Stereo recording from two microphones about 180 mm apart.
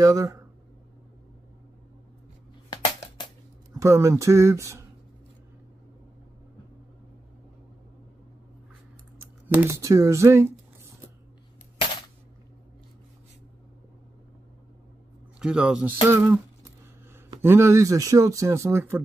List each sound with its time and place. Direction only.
0.0 s speech: 20° right (ahead or behind)
3.7 s speech: 15° right (ahead or behind)
9.5 s speech: 15° right (ahead or behind)
15.3 s speech: 5° right (ahead or behind)
17.4 s speech: 15° right (ahead or behind)